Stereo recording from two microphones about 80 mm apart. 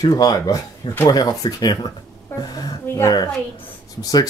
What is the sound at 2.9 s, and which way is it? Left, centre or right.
Speech, left.